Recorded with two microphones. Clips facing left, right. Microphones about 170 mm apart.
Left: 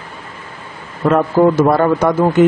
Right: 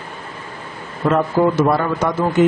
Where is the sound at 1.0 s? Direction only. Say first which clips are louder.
Left 4 dB; 55° left (ahead or behind).